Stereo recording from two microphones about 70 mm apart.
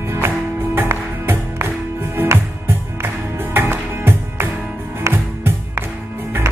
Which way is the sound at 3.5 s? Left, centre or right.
Right.